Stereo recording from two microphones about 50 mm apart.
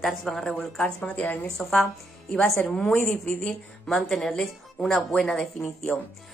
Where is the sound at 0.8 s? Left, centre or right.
Left.